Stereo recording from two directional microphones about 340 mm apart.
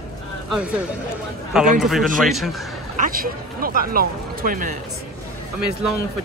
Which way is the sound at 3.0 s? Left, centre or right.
Right.